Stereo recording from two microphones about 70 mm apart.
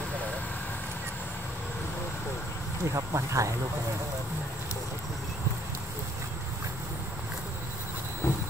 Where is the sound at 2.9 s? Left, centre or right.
Right.